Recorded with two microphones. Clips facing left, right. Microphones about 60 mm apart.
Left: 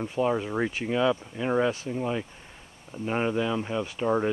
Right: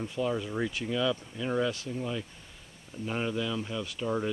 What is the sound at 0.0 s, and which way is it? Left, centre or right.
Speech, left.